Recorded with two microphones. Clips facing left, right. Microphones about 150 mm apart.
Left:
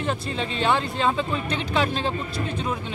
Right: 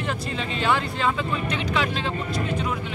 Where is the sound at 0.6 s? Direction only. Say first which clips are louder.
Left 1 dB; 25° left (ahead or behind).